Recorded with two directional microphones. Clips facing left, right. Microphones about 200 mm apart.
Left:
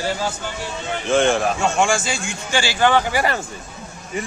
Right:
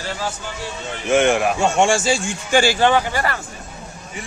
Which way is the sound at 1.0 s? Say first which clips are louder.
Right 1 dB; 15° right (ahead or behind).